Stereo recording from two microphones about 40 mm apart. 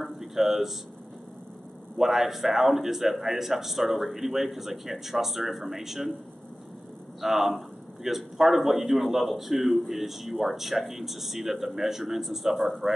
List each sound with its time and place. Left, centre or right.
0.0 s a sound: centre
2.0 s a man's voice: centre
7.2 s a man's voice: centre